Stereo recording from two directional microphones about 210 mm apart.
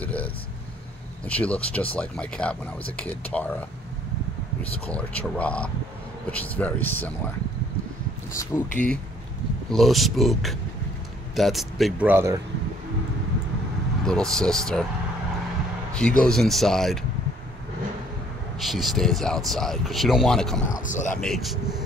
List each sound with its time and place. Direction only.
0.0 s vehicle: 5° left (ahead or behind)
1.2 s speech: 5° left (ahead or behind)
4.8 s speech: 5° left (ahead or behind)
8.4 s speech: 10° left (ahead or behind); by 12.4 s 10° right (ahead or behind)
14.0 s speech: 5° left (ahead or behind)
15.9 s speech: 5° left (ahead or behind)
18.6 s speech: centre (ahead or behind)
20.8 s speech: 35° left (ahead or behind)
21.2 s speech: centre (ahead or behind)